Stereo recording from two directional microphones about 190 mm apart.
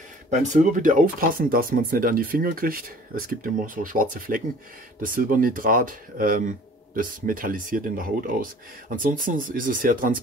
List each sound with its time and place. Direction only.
0.3 s speech: 40° right (ahead or behind)